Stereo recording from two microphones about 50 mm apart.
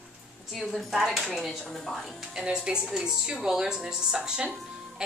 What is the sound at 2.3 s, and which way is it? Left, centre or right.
A woman's voice, centre.